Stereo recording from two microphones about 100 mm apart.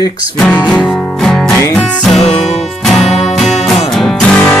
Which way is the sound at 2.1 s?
90° left.